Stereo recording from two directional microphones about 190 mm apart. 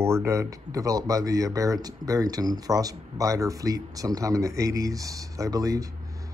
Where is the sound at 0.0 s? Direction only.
15° right (ahead or behind).